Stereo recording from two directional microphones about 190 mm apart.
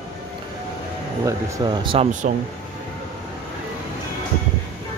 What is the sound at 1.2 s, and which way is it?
Speech, 15° right (ahead or behind).